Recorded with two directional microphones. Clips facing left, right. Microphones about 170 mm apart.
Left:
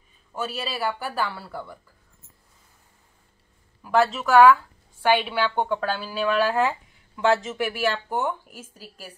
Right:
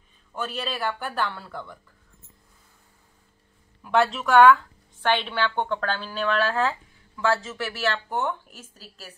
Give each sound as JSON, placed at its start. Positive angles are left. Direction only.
{"t": 0.3, "sound": "a woman's voice", "side_deg": 10}
{"t": 3.8, "sound": "a woman's voice", "side_deg": 0}